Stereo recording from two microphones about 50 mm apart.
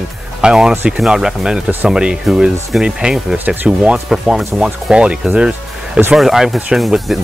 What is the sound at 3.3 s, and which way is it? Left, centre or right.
Speech, right.